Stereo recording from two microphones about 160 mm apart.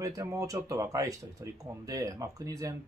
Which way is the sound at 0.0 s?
20° right (ahead or behind).